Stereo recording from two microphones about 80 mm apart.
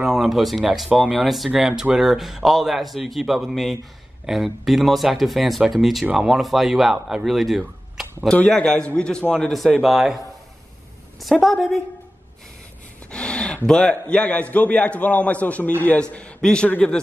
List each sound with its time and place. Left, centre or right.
0.0 s a man's voice: centre
8.3 s a man's voice: centre
9.8 s speech: centre
11.1 s a man's voice: centre
13.1 s a sound: centre
13.7 s a man's voice: centre